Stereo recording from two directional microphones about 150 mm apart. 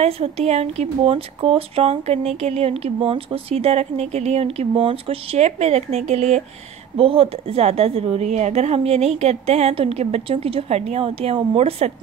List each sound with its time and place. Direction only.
0.0 s speech: 45° right (ahead or behind)